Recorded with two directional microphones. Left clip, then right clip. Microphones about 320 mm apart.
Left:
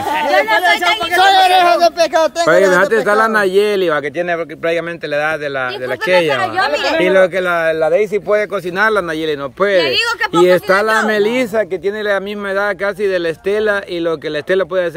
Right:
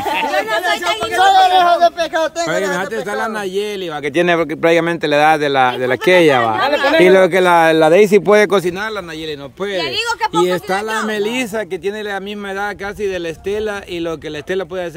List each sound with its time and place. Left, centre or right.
0.3 s speech: centre
1.1 s speech: left
2.7 s speech: centre
4.2 s speech: right
8.7 s speech: centre